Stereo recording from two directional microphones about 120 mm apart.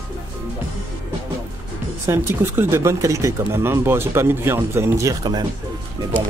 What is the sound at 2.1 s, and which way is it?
Speech, 20° right (ahead or behind).